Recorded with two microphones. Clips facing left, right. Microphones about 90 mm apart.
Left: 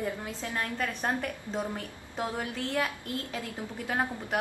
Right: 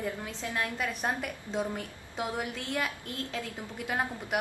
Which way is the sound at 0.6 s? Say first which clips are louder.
Even; 10° right (ahead or behind).